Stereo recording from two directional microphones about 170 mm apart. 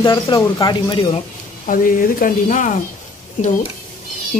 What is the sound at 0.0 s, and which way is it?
Speech, 20° left (ahead or behind).